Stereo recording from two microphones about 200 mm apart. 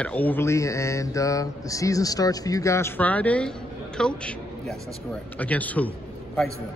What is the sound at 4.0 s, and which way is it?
A man's voice, 5° left (ahead or behind).